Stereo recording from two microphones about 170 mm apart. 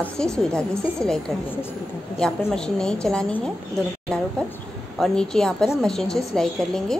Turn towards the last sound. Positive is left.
turn(degrees=5)  # may be behind; listen again after turning